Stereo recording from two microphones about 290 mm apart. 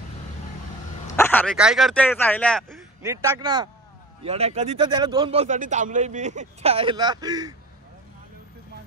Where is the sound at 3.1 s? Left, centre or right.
Centre.